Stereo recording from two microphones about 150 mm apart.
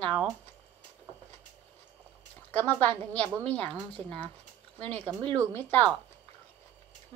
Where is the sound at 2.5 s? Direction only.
10° left (ahead or behind).